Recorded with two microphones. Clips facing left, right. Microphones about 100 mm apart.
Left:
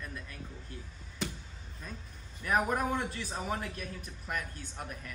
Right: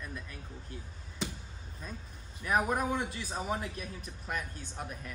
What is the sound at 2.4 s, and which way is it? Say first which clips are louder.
Speech: even; 15° right (ahead or behind).